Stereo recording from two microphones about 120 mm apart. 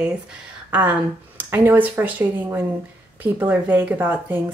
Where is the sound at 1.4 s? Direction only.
20° right (ahead or behind).